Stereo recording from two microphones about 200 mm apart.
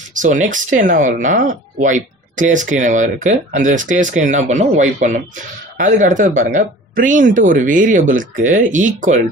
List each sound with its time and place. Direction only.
0.1 s speech: 40° right (ahead or behind)